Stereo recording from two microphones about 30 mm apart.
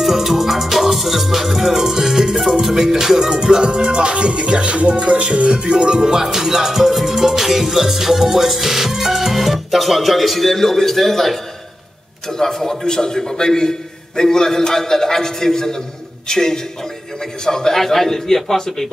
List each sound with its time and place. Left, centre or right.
0.0 s music: centre
3.6 s music: right
6.2 s music: centre
12.3 s a man's voice: centre
17.7 s a man's voice: centre